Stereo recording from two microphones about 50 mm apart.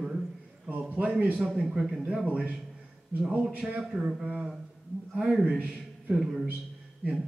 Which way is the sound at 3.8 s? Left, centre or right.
Centre.